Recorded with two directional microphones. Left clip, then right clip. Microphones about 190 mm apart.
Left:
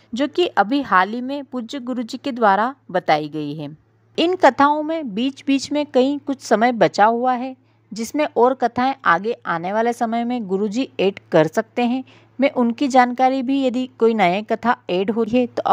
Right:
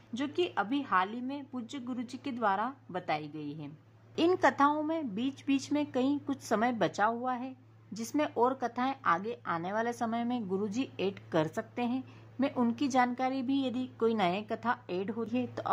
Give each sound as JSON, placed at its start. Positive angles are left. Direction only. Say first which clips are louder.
{"t": 0.1, "sound": "a woman's voice", "louder": "left 14 dB", "side_deg": 50}
{"t": 4.1, "sound": "a woman's voice", "louder": "left 12 dB", "side_deg": 40}